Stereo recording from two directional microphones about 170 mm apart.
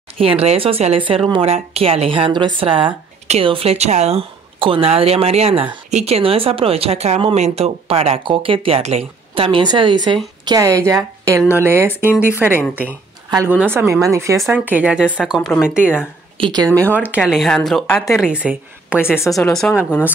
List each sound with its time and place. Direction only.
0.2 s speech: 35° right (ahead or behind); by 16.1 s 5° right (ahead or behind)
16.3 s speech: 25° right (ahead or behind)
16.9 s speech: 10° right (ahead or behind)